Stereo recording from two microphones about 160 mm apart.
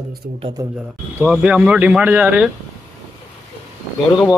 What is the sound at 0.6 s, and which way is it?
Speech, 20° right (ahead or behind).